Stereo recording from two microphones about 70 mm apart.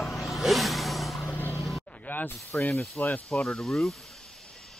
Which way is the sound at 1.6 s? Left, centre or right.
Centre.